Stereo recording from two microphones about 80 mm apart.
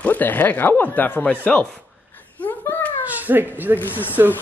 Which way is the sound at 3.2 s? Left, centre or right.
Right.